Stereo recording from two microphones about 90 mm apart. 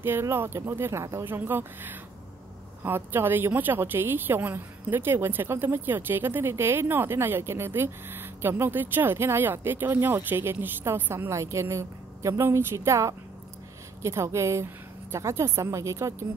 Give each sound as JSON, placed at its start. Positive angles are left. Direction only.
{"t": 0.0, "sound": "a woman's voice", "side_deg": -25}
{"t": 11.3, "sound": "a woman's voice", "side_deg": -35}